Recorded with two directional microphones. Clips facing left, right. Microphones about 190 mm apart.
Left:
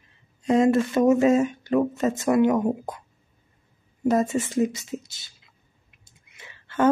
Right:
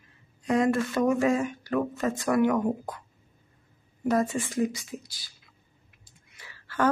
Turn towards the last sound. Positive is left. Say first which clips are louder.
# left 4 dB
turn(degrees=25)  # may be behind; listen again after turning